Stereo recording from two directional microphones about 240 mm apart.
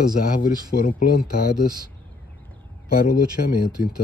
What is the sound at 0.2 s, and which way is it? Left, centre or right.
Speech, left.